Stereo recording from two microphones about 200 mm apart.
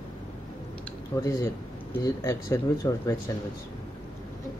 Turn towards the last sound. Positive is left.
turn(degrees=15)  # may be behind; listen again after turning